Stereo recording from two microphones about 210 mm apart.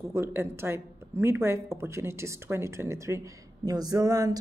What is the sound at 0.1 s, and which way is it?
A woman's voice, 10° right (ahead or behind).